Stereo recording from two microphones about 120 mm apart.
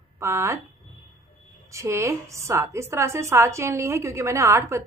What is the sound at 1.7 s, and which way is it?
A woman's voice, 25° right (ahead or behind).